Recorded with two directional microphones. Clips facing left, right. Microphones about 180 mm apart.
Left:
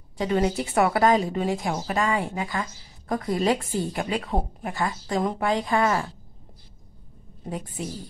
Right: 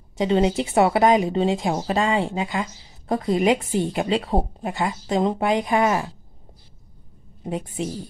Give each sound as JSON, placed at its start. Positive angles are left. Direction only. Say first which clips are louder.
{"t": 0.2, "sound": "a woman's voice", "louder": "right 4 dB", "side_deg": -20}
{"t": 7.4, "sound": "a woman's voice", "louder": "right 5 dB", "side_deg": -20}